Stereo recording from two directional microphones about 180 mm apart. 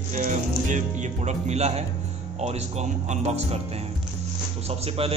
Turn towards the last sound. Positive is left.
turn(degrees=-30)  # may be behind; listen again after turning